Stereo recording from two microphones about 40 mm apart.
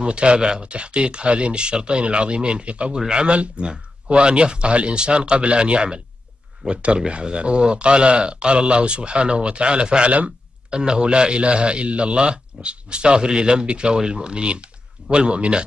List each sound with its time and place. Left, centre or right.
0.0 s a man's voice: right